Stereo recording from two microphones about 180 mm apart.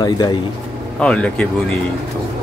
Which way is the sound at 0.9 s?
5° left (ahead or behind).